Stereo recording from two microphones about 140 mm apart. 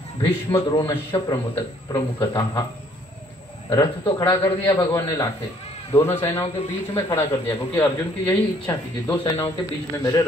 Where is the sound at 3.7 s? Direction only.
30° left (ahead or behind).